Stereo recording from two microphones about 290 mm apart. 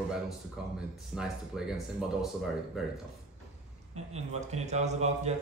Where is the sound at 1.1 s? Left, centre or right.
Centre.